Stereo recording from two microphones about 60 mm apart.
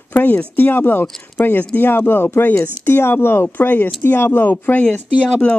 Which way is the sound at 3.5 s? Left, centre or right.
Left.